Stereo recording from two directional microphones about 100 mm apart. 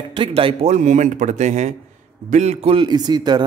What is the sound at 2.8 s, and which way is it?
Speech, 45° right (ahead or behind).